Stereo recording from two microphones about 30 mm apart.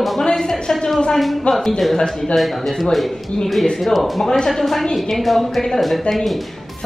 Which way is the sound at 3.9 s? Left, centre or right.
Centre.